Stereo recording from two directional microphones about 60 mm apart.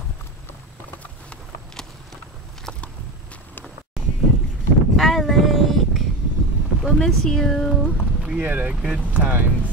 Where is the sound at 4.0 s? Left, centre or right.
Centre.